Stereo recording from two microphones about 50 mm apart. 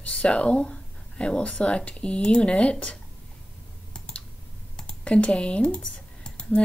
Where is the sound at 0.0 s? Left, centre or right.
Left.